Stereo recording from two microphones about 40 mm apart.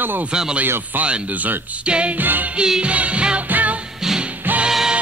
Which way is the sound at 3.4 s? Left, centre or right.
Right.